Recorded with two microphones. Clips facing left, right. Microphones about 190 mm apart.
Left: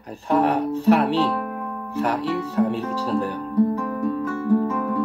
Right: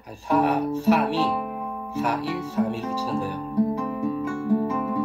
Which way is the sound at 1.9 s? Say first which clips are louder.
Left 3 dB; 60° left (ahead or behind).